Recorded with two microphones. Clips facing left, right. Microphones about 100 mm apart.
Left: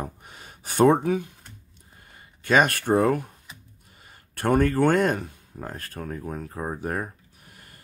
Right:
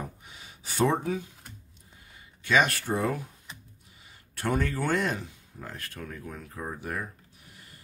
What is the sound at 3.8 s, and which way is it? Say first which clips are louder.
Speech: left 3 dB; 50° left (ahead or behind).